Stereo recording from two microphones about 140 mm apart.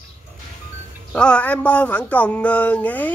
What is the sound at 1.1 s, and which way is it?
Speech, 5° left (ahead or behind).